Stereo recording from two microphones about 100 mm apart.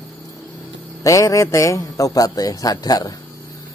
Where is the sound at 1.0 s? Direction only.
35° left (ahead or behind).